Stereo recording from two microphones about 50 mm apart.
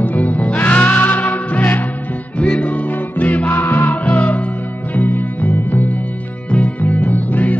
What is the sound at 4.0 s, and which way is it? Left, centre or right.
Music, left.